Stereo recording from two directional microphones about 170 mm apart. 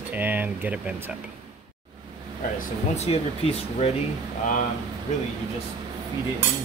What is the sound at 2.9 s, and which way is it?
Speech, 35° left (ahead or behind).